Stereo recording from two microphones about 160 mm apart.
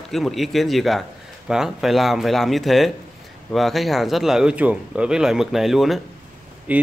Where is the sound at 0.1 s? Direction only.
Centre (ahead or behind).